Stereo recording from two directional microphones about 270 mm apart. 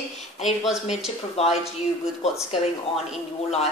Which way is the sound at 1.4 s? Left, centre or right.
Left.